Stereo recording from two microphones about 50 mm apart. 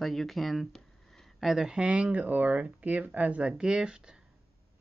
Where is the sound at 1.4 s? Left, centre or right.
Centre.